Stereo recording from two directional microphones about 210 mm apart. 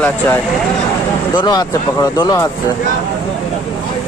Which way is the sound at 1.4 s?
20° left (ahead or behind).